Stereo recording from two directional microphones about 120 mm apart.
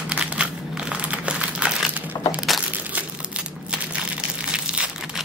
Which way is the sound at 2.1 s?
30° left (ahead or behind).